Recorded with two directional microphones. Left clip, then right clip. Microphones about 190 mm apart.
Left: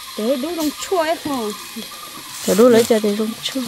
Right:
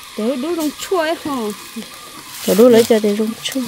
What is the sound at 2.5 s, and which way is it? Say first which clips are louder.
Speech: right 2 dB; 15° right (ahead or behind).